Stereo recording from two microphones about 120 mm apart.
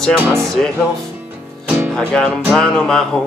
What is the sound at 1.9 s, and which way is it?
Speech, 5° left (ahead or behind).